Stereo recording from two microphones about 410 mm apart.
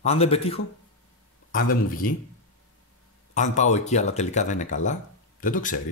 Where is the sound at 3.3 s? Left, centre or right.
Centre.